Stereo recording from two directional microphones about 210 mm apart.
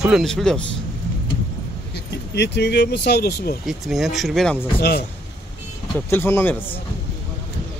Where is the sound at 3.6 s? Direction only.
Centre (ahead or behind).